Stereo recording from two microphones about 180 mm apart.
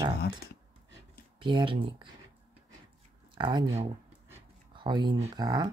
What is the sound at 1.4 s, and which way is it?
Speech, 25° right (ahead or behind).